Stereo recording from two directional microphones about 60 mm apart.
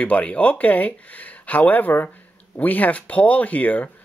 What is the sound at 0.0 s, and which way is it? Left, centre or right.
Speech, left.